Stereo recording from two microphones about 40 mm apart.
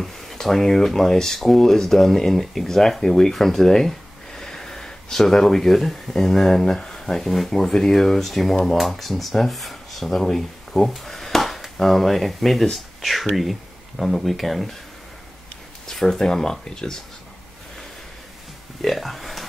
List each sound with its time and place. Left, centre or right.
0.4 s speech: centre
15.9 s speech: centre
18.8 s speech: centre